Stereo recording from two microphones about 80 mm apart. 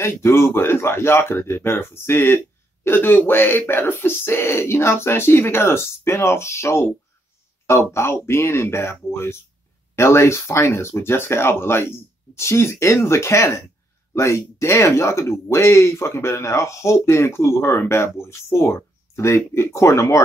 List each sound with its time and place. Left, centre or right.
0.0 s speech: left